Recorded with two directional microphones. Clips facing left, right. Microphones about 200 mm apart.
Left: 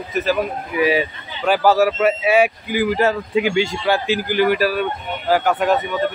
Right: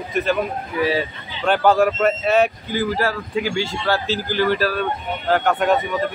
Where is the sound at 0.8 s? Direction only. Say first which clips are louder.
Left 3 dB; 15° left (ahead or behind).